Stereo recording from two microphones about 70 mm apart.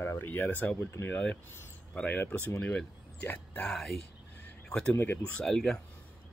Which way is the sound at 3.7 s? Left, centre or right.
Centre.